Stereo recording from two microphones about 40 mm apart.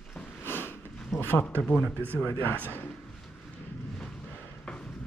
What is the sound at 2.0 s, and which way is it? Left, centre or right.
Speech, left.